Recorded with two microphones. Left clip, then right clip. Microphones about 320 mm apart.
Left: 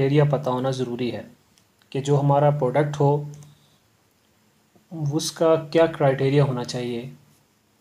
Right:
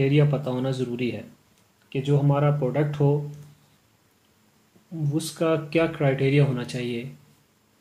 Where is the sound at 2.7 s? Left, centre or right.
Left.